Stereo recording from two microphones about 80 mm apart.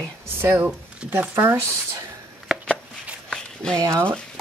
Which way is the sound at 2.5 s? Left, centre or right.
Centre.